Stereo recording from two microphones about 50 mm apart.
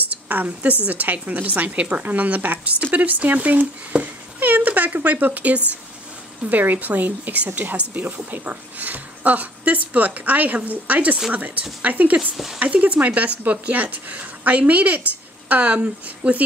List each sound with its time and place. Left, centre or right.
0.1 s a woman's voice: right
3.9 s a sound: centre
4.4 s speech: right
12.2 s speech: centre
12.5 s speech: right